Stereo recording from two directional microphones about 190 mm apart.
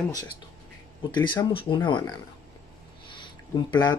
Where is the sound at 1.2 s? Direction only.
25° left (ahead or behind).